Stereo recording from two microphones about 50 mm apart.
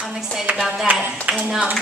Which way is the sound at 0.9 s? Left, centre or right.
Right.